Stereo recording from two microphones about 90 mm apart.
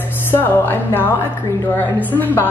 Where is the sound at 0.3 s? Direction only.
20° left (ahead or behind).